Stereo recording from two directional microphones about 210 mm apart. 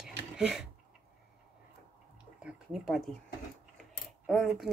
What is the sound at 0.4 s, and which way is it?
Speech, 5° right (ahead or behind).